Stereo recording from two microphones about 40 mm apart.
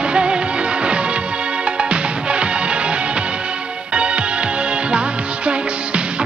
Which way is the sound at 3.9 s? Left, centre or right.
Right.